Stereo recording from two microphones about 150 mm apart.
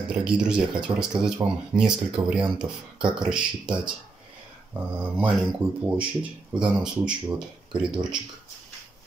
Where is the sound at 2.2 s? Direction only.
40° right (ahead or behind).